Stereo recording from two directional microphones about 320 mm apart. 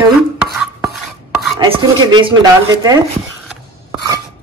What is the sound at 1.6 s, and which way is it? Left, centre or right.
Speech, centre.